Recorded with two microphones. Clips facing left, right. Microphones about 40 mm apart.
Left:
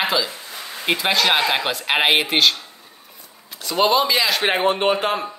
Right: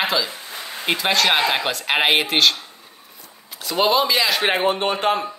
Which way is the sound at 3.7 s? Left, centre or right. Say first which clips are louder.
Left 1 dB; centre.